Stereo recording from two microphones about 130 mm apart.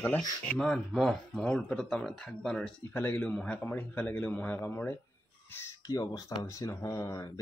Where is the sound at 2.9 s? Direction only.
15° left (ahead or behind); by 6.7 s 30° left (ahead or behind).